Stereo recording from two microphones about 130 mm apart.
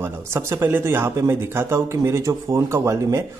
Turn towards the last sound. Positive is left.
turn(degrees=-20)  # may be behind; listen again after turning